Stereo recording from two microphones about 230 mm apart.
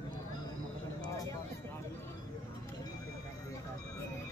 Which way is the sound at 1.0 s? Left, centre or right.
Centre.